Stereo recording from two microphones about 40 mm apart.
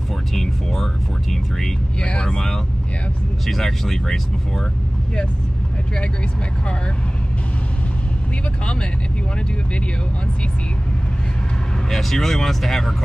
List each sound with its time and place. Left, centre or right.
0.3 s music: centre
2.0 s speech: left
3.4 s speech: centre
11.9 s speech: centre